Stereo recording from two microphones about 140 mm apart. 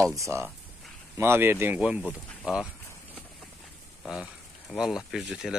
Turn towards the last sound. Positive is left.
turn(degrees=-5)  # may be behind; listen again after turning